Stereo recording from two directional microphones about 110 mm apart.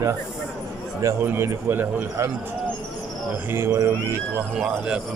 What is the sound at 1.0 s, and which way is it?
A man's voice, 20° right (ahead or behind).